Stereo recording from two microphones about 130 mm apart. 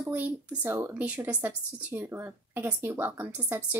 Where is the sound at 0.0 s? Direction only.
15° right (ahead or behind).